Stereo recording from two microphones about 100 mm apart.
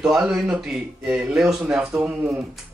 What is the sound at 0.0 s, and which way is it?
Speech, 5° right (ahead or behind).